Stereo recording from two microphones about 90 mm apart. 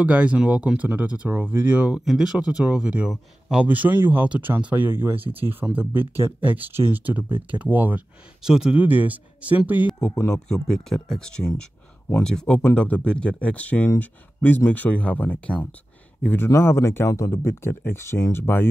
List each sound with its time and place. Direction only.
0.0 s speech: 15° right (ahead or behind)
2.0 s speech: 5° right (ahead or behind)
3.6 s speech: 20° right (ahead or behind)
8.4 s speech: 5° right (ahead or behind)
8.7 s speech: 20° right (ahead or behind)
10.1 s speech: 35° left (ahead or behind)
10.5 s speech: 5° left (ahead or behind)
16.4 s speech: 30° left (ahead or behind)